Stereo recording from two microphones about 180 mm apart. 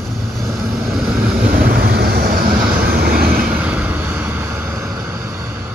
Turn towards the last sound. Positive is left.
turn(degrees=-15)  # may be behind; listen again after turning